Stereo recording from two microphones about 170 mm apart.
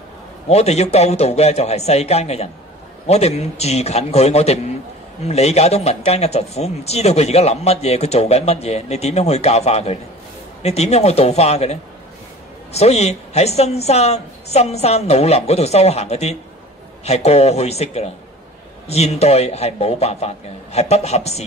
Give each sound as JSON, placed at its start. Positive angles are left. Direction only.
{"t": 0.5, "sound": "speech", "side_deg": 40}